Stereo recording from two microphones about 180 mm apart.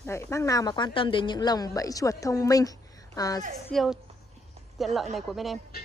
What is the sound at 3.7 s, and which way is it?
Speech, centre (ahead or behind).